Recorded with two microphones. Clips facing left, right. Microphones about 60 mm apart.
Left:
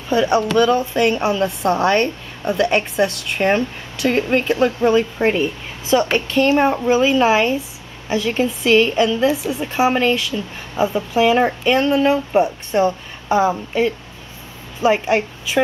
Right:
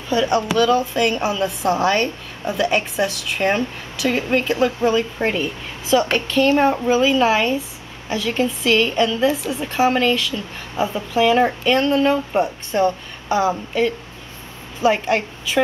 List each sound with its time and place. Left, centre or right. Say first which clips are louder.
0.7 s a woman's voice: left 2 dB; centre
5.9 s a woman's voice: left 1 dB; centre